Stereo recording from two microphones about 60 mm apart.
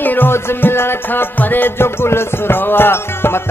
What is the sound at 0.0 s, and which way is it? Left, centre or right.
Music, left.